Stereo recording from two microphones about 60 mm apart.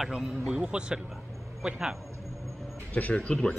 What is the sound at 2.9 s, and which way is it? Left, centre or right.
Speech, left.